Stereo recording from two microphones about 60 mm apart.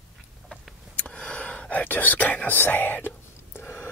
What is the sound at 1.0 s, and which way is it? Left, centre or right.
Whispering, centre.